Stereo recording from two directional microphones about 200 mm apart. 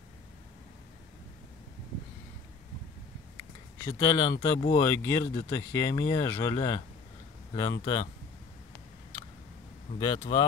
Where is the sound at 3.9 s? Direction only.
20° left (ahead or behind).